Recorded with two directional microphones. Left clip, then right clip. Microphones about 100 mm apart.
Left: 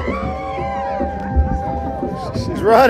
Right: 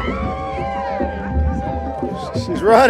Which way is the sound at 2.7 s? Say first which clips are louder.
Even; 75° right (ahead or behind).